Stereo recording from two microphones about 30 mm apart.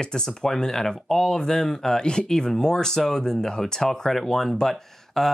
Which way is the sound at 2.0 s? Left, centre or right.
Left.